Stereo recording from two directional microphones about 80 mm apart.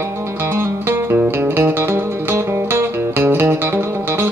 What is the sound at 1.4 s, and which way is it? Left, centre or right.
Music, right.